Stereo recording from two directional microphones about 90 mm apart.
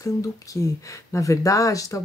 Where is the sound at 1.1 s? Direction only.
35° left (ahead or behind).